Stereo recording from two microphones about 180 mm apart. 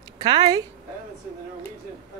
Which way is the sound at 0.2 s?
25° right (ahead or behind).